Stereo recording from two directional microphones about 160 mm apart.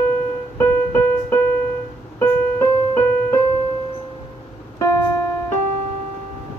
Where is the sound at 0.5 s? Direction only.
15° left (ahead or behind).